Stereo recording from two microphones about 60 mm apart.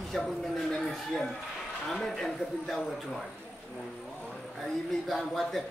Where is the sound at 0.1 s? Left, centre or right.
Centre.